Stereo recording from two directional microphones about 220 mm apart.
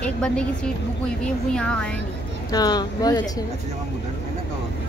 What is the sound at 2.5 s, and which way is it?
Speech, 20° left (ahead or behind).